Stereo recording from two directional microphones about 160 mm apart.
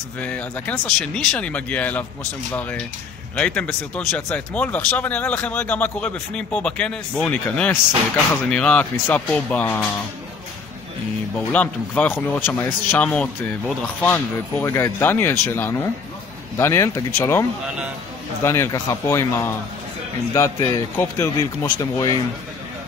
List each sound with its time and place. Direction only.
0.2 s speech: 10° left (ahead or behind)
3.3 s speech: 5° left (ahead or behind)
11.3 s a man's voice: 10° left (ahead or behind); by 22.2 s 25° left (ahead or behind)